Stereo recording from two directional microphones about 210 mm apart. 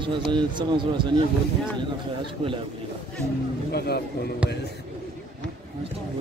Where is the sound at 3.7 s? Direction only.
50° left (ahead or behind).